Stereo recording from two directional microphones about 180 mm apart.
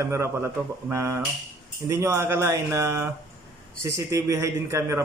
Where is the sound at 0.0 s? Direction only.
15° right (ahead or behind).